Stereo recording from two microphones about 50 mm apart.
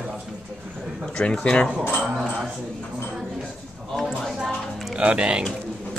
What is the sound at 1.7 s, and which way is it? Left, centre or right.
Speech, centre.